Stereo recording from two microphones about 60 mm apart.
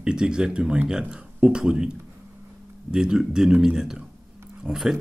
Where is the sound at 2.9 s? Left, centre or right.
Centre.